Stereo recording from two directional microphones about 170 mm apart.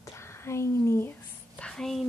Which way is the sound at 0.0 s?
15° left (ahead or behind).